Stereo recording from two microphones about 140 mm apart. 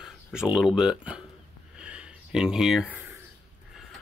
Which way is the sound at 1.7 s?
10° right (ahead or behind).